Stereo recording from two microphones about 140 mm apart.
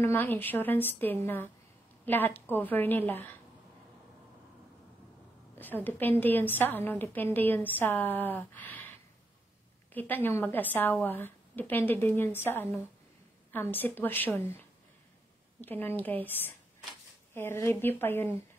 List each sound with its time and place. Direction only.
0.0 s a woman's voice: 15° left (ahead or behind)
5.9 s a woman's voice: 15° left (ahead or behind)
9.9 s a woman's voice: 15° left (ahead or behind)